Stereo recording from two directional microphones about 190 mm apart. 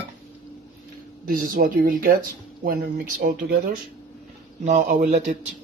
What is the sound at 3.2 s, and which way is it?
Speech, 50° right (ahead or behind).